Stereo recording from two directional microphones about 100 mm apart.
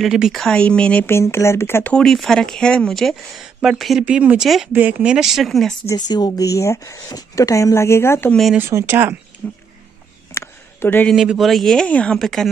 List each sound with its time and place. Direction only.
0.0 s speech: 5° right (ahead or behind)
0.4 s speech: 10° left (ahead or behind)
1.0 s speech: 25° left (ahead or behind)
2.0 s speech: 5° left (ahead or behind)
4.0 s speech: 15° right (ahead or behind)
5.1 s speech: 5° right (ahead or behind)
5.9 s speech: 45° left (ahead or behind); by 8.3 s 25° left (ahead or behind)
8.5 s speech: 25° right (ahead or behind)
9.4 s speech: 15° left (ahead or behind)
10.3 s a sound: 25° left (ahead or behind)
11.2 s speech: centre (ahead or behind)